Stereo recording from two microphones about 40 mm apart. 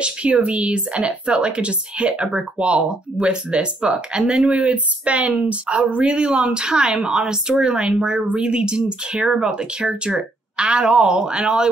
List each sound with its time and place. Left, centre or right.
0.0 s a woman's voice: right
6.0 s a woman's voice: right